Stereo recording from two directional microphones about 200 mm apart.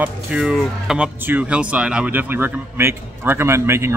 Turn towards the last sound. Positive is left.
turn(degrees=-15)  # may be behind; listen again after turning